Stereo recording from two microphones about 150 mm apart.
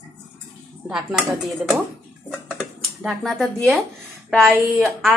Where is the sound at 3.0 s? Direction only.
Centre (ahead or behind).